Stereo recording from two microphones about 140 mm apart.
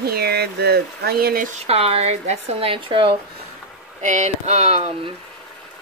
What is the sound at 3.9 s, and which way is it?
Speech, 60° right (ahead or behind).